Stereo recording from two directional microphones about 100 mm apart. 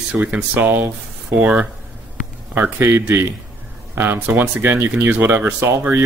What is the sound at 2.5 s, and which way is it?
Speech, 25° right (ahead or behind).